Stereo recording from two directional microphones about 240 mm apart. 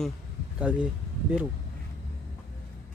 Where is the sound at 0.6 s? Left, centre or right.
Centre.